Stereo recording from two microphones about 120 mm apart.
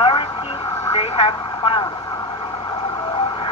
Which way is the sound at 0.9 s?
50° left (ahead or behind).